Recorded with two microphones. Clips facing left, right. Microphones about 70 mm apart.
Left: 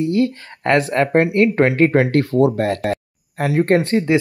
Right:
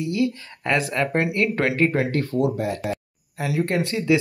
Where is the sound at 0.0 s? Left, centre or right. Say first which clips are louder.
Left 5 dB; left.